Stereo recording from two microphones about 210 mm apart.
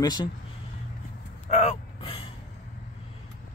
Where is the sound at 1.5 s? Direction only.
30° left (ahead or behind).